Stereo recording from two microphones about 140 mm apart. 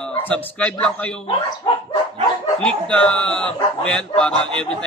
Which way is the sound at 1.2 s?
40° left (ahead or behind).